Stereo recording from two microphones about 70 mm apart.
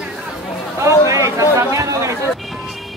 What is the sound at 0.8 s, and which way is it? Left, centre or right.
Speech, right.